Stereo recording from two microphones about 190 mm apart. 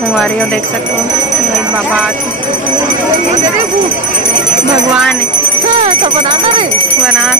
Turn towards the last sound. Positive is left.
turn(degrees=-25)  # may be behind; listen again after turning